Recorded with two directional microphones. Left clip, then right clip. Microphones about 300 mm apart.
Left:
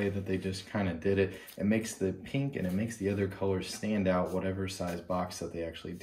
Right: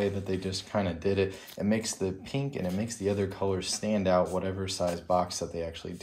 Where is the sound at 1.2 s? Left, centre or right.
Right.